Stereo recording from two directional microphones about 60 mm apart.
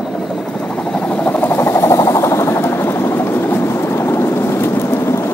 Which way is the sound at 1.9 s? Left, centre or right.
Left.